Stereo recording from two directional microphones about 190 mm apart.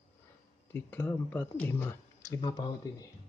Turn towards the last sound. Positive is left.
turn(degrees=25)  # may be behind; listen again after turning